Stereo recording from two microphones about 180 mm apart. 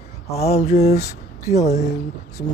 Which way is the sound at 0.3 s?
35° left (ahead or behind).